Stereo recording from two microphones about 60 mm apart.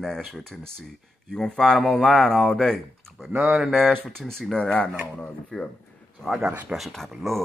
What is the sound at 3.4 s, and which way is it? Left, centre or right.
Speech, centre.